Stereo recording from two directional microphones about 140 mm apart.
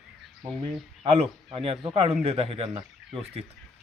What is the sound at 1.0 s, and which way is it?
A man's voice, 40° right (ahead or behind).